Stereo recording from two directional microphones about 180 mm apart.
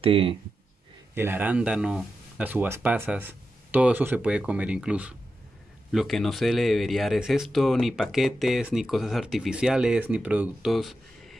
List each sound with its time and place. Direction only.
0.0 s speech: 30° right (ahead or behind)
1.1 s speech: 10° right (ahead or behind)